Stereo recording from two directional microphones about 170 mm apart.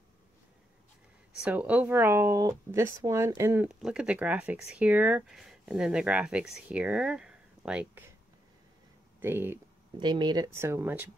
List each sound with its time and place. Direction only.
1.4 s speech: 10° right (ahead or behind)
3.6 s speech: 5° right (ahead or behind)
9.2 s speech: 10° right (ahead or behind)
9.9 s speech: 25° right (ahead or behind)